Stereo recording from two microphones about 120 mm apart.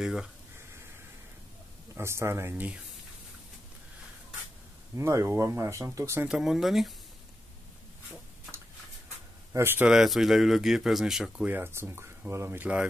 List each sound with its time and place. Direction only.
0.0 s speech: 5° right (ahead or behind)
2.0 s speech: 20° right (ahead or behind)
4.9 s speech: 25° right (ahead or behind)
6.2 s speech: 5° right (ahead or behind)
9.5 s speech: 20° right (ahead or behind)
9.8 s speech: 5° right (ahead or behind)
11.4 s speech: 15° right (ahead or behind)